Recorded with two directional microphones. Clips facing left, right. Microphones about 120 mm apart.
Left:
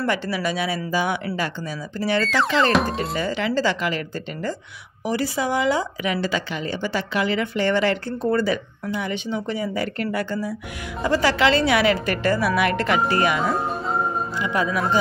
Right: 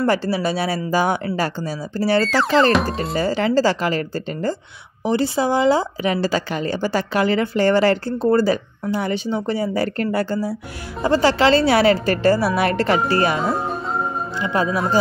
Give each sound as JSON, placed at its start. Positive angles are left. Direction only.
{"t": 0.0, "sound": "a woman's voice", "side_deg": -35}
{"t": 2.2, "sound": "music", "side_deg": 0}
{"t": 3.2, "sound": "a woman's voice", "side_deg": -35}